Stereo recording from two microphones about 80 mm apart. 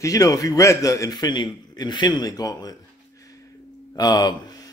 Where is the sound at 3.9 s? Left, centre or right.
Left.